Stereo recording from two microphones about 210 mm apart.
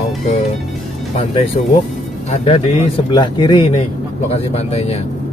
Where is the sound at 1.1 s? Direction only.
30° left (ahead or behind).